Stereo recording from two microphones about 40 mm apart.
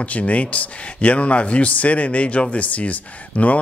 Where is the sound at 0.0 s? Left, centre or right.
Left.